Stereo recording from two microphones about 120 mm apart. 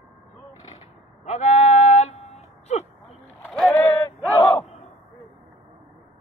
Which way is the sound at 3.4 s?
Centre (ahead or behind).